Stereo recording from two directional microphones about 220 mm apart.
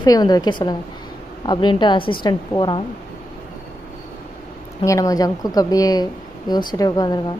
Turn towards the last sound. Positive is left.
turn(degrees=15)  # may be behind; listen again after turning